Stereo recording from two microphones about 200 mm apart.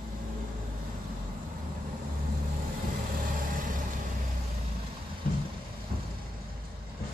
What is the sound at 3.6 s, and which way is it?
Vehicle, 40° right (ahead or behind).